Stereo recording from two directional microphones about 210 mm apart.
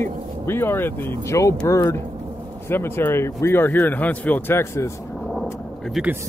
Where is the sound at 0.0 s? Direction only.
10° left (ahead or behind).